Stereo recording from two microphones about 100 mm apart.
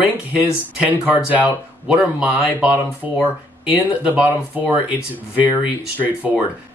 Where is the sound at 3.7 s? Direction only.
15° right (ahead or behind).